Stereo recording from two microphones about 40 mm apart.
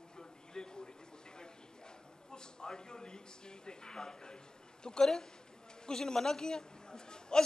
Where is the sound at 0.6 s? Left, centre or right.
Centre.